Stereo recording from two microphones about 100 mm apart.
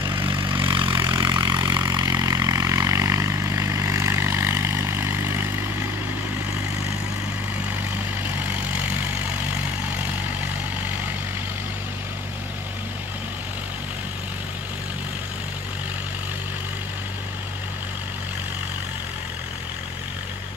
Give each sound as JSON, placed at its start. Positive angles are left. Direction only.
{"t": 0.0, "sound": "vehicle", "side_deg": -50}